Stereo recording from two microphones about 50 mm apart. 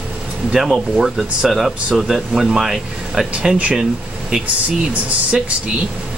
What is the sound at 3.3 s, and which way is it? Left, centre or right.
Speech, right.